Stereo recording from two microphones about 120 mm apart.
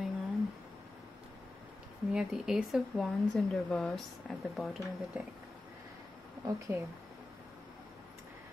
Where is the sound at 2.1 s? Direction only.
5° right (ahead or behind).